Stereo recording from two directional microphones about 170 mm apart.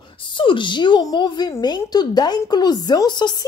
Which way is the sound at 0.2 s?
30° left (ahead or behind).